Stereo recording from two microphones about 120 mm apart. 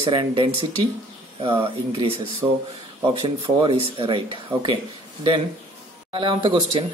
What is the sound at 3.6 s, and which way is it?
A man's voice, 45° right (ahead or behind).